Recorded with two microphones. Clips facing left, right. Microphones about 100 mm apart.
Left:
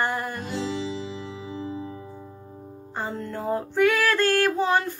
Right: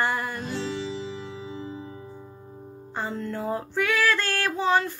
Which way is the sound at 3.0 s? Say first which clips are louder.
Even; 30° left (ahead or behind).